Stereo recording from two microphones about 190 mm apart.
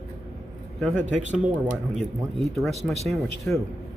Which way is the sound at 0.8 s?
10° left (ahead or behind).